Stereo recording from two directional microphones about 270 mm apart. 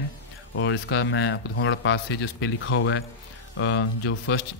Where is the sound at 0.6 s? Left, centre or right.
Left.